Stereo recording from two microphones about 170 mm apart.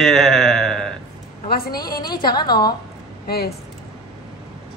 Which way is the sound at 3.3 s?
65° left (ahead or behind).